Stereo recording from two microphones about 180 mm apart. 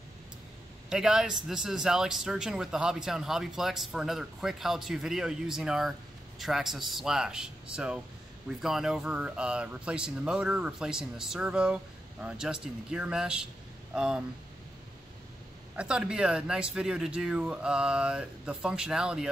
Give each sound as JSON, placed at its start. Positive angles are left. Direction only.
{"t": 0.8, "sound": "a man's voice", "side_deg": -5}
{"t": 15.7, "sound": "a man's voice", "side_deg": -5}